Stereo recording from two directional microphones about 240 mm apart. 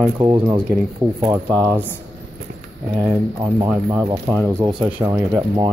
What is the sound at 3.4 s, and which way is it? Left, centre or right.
Speech, centre.